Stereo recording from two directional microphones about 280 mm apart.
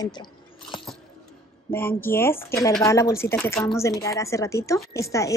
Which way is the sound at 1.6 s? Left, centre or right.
Centre.